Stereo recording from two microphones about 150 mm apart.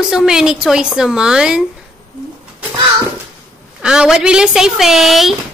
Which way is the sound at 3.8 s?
5° right (ahead or behind).